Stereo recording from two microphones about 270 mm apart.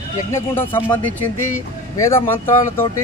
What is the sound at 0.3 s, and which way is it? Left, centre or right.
Speech, centre.